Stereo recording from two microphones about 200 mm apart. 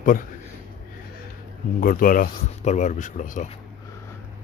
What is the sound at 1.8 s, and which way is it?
A man's voice, 45° left (ahead or behind).